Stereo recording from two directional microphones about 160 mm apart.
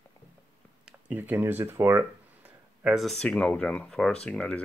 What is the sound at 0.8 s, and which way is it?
Speech, 10° right (ahead or behind).